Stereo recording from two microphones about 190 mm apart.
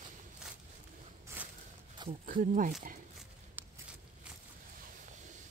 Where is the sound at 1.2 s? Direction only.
10° right (ahead or behind).